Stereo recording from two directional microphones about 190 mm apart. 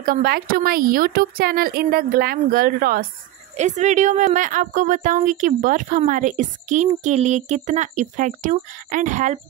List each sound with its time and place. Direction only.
0.0 s a woman's voice: 50° right (ahead or behind)
3.5 s a woman's voice: 40° right (ahead or behind)